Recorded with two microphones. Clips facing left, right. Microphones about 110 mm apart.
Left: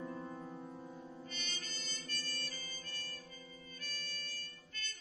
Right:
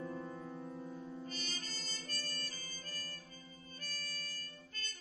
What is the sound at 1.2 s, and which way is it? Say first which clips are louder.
Harmonica: right 3 dB; 35° right (ahead or behind).